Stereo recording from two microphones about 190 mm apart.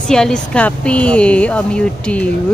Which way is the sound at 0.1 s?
5° left (ahead or behind).